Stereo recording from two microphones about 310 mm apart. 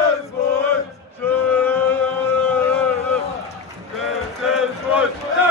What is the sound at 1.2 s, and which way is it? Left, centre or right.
Male singing, centre.